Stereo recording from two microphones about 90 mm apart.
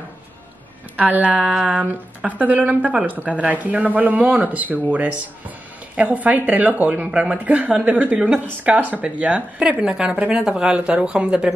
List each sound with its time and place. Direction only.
0.9 s a woman's voice: 20° right (ahead or behind)
5.9 s a woman's voice: 15° right (ahead or behind)